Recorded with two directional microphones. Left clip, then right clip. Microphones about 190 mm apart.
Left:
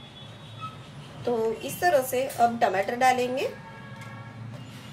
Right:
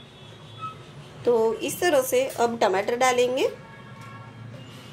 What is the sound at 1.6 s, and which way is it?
A woman's voice, 35° right (ahead or behind).